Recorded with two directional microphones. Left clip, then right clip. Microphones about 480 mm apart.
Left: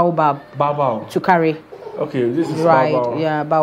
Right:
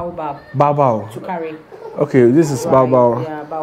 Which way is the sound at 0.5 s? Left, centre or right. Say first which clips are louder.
Right 4 dB; right.